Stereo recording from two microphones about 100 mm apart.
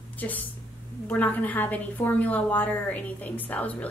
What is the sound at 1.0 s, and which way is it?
A woman's voice, 15° left (ahead or behind).